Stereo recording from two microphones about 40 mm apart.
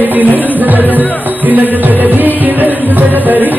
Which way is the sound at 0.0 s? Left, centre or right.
Right.